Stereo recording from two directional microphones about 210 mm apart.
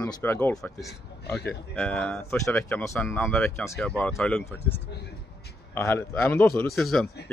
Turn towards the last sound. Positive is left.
turn(degrees=0)  # may be behind; listen again after turning